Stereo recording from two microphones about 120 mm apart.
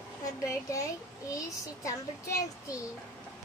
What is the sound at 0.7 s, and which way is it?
A child's voice, 25° left (ahead or behind).